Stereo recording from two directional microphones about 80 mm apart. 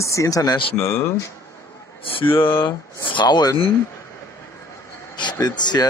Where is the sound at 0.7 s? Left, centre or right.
Left.